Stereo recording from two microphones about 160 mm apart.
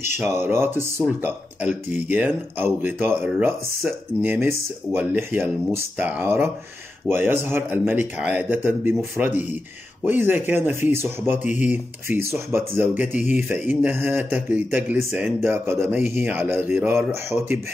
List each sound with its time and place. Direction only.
0.2 s speech: 15° right (ahead or behind)